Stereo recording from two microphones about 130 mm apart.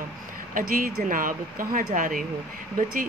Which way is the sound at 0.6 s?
90° right.